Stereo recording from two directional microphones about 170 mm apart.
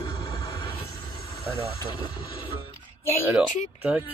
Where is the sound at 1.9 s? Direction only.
30° left (ahead or behind).